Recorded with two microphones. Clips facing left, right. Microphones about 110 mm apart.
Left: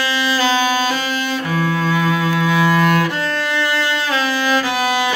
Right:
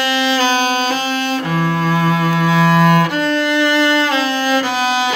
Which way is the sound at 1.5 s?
40° right (ahead or behind).